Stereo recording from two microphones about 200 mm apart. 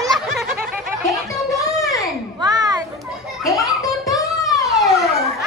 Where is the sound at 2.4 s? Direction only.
20° right (ahead or behind).